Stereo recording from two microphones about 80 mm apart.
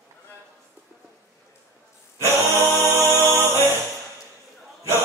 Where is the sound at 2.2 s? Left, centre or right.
Right.